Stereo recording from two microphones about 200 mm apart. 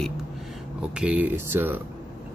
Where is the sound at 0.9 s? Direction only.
5° right (ahead or behind).